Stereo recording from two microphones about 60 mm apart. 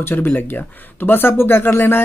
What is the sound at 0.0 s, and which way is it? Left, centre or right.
Speech, left.